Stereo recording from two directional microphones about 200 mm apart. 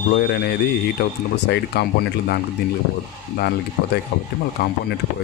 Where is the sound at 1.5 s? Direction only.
55° left (ahead or behind).